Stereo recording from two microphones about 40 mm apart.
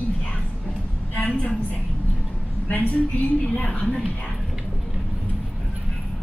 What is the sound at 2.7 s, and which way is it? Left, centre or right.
A woman's voice, left.